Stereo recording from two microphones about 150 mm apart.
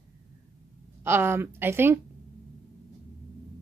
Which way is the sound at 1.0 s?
15° right (ahead or behind).